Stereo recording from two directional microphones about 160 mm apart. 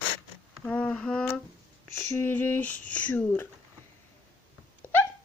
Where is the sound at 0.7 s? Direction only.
5° left (ahead or behind).